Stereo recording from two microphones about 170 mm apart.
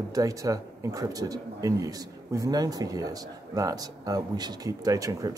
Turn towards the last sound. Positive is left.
turn(degrees=-20)  # may be behind; listen again after turning